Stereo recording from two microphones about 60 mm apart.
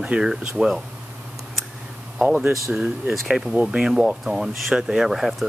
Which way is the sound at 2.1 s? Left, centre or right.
Right.